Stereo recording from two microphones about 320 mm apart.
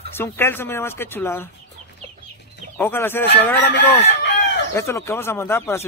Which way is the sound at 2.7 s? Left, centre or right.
Centre.